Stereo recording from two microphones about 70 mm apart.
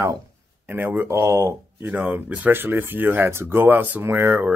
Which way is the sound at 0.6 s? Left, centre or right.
Right.